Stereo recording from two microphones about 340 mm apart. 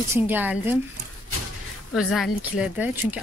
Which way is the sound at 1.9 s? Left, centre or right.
Centre.